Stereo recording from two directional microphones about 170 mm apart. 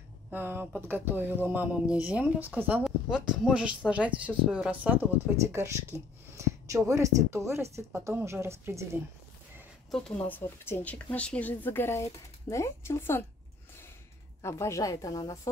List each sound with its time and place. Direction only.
0.3 s speech: 10° right (ahead or behind)
9.8 s a woman's voice: 5° left (ahead or behind)
14.4 s a woman's voice: 15° left (ahead or behind)